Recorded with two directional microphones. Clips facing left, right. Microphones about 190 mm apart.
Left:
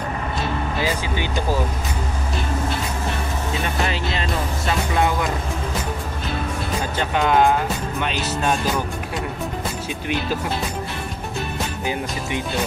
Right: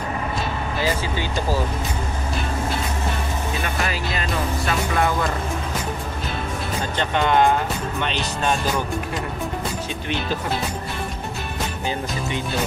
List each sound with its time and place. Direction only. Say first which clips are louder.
3.9 s music: left 1 dB; 25° left (ahead or behind)
4.9 s speech: left 1 dB; 20° left (ahead or behind)
7.0 s speech: left 1 dB; 5° left (ahead or behind)